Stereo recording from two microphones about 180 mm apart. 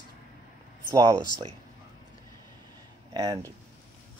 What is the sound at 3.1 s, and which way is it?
Speech, 20° right (ahead or behind).